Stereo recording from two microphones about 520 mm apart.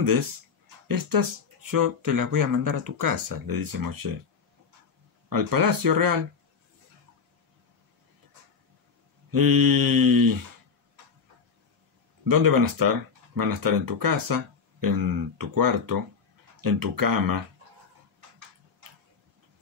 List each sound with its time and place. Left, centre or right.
0.8 s speech: right
5.3 s speech: right
9.3 s speech: right
12.3 s speech: right